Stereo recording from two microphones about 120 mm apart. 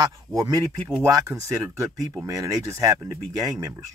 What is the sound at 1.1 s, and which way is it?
Speech, 25° right (ahead or behind).